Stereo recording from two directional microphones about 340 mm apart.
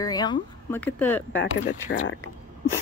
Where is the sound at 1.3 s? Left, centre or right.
Left.